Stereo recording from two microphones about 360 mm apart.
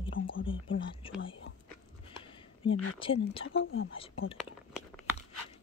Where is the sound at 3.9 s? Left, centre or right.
Centre.